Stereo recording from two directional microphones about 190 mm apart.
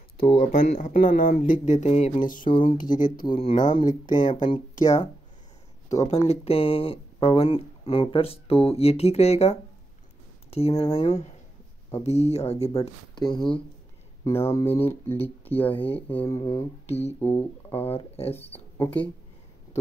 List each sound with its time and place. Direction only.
0.4 s speech: 45° left (ahead or behind)
2.4 s speech: 25° left (ahead or behind)
2.9 s speech: 45° left (ahead or behind)
3.3 s speech: 30° left (ahead or behind)
3.8 s speech: 40° left (ahead or behind)
6.0 s speech: 35° left (ahead or behind); by 17.7 s 10° left (ahead or behind)
17.7 s speech: 30° left (ahead or behind)